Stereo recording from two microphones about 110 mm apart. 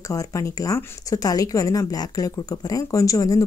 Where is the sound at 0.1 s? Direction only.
30° left (ahead or behind).